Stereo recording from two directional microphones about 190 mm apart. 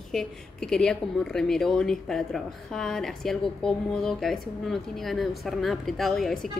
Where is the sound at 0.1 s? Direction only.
Centre (ahead or behind).